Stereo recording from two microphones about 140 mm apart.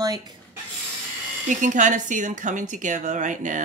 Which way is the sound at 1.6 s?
65° right (ahead or behind).